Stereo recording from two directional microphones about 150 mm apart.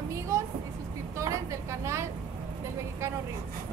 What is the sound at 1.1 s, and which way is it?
Vehicle, 20° right (ahead or behind).